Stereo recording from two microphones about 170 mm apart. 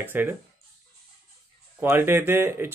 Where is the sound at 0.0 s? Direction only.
10° right (ahead or behind).